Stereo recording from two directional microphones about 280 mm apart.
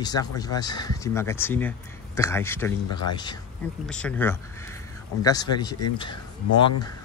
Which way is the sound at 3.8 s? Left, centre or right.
Centre.